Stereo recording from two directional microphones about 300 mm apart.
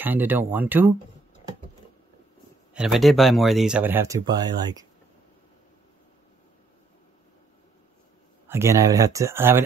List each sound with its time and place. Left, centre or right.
0.0 s speech: centre
2.7 s speech: centre
8.5 s speech: centre